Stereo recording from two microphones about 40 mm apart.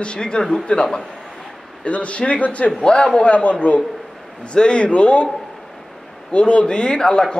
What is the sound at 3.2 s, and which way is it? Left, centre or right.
Speech, left.